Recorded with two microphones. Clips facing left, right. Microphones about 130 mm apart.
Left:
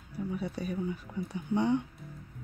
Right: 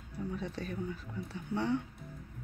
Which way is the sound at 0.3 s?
10° left (ahead or behind).